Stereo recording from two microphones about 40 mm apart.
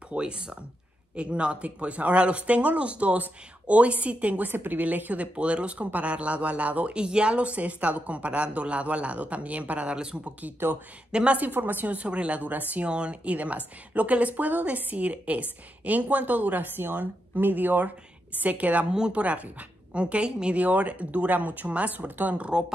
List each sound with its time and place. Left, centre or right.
0.1 s speech: right
4.5 s speech: right
7.0 s speech: right
11.1 s a woman's voice: right
11.3 s a woman's voice: right
12.1 s speech: right
12.8 s a woman's voice: right
18.4 s speech: right
18.9 s speech: centre
19.1 s speech: right
20.5 s speech: right
22.3 s speech: right